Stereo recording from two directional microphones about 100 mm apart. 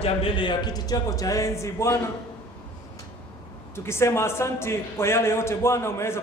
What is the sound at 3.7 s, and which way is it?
A man's voice, 25° left (ahead or behind).